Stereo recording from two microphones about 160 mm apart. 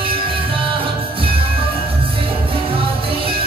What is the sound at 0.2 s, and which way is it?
Music, 35° right (ahead or behind).